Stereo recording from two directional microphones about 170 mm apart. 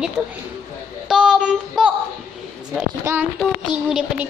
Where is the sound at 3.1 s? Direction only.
20° right (ahead or behind).